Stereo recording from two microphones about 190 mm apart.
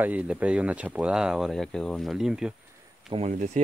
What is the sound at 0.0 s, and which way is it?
Speech, 10° right (ahead or behind).